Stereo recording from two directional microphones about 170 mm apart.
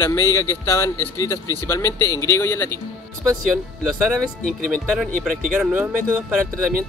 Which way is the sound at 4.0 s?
5° right (ahead or behind).